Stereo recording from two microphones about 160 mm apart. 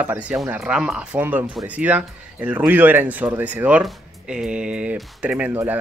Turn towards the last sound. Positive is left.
turn(degrees=-15)  # may be behind; listen again after turning